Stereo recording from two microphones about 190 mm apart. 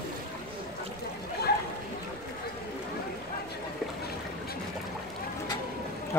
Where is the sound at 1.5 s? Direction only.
55° left (ahead or behind).